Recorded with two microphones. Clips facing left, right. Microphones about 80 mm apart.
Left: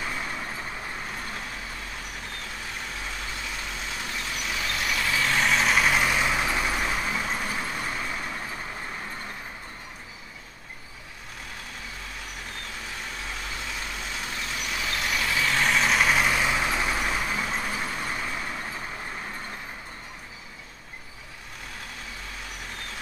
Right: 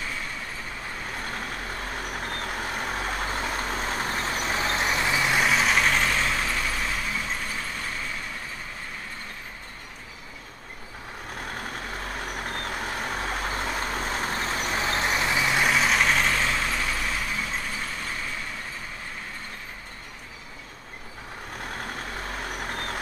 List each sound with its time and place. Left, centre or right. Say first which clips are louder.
2.1 s vehicle: right 6 dB; right; by 7.9 s centre
11.8 s vehicle: right 6 dB; right; by 18.3 s centre
22.2 s vehicle: right 6 dB; right